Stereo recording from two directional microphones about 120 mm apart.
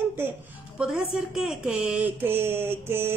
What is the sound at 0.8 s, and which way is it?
Speech, 5° right (ahead or behind).